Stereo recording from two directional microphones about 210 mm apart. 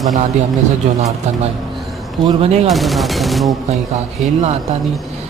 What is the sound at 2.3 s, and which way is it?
Speech, 30° right (ahead or behind).